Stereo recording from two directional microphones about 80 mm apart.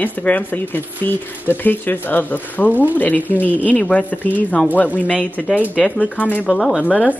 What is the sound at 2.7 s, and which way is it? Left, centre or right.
Speech, right.